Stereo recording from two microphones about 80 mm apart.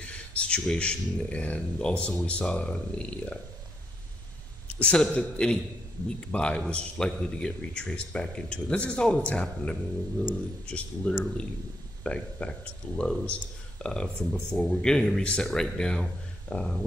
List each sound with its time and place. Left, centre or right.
0.0 s a man's voice: centre
4.6 s a sound: centre
5.1 s a man's voice: centre